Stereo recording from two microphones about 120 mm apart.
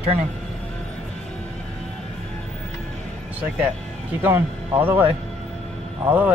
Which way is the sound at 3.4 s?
10° right (ahead or behind).